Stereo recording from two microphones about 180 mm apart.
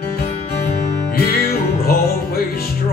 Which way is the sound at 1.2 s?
55° left (ahead or behind).